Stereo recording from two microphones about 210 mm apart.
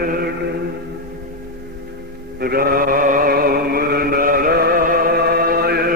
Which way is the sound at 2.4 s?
45° right (ahead or behind).